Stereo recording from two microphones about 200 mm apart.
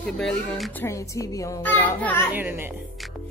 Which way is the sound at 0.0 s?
5° left (ahead or behind).